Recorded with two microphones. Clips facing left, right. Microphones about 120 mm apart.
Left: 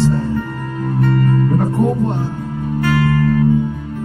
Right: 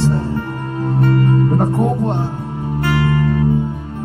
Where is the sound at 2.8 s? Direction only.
25° right (ahead or behind).